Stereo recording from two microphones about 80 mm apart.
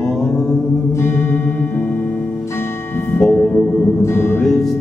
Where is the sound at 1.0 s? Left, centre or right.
Left.